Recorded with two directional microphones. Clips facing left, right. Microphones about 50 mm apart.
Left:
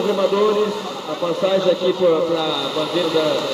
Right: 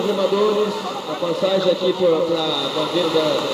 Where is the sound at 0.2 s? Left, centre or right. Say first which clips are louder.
Left 1 dB; centre.